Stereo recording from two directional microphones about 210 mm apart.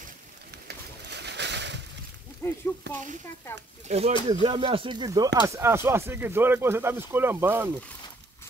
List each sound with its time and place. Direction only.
0.7 s pigeon: 55° right (ahead or behind)
2.4 s speech: 15° left (ahead or behind)
2.9 s speech: 55° right (ahead or behind)
3.8 s speech: 30° right (ahead or behind); by 7.7 s 10° right (ahead or behind)